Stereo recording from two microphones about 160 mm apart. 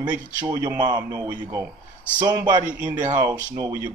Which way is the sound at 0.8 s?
25° right (ahead or behind).